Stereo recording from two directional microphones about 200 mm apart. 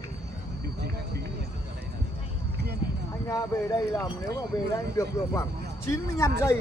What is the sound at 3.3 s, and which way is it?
Speech, 15° left (ahead or behind).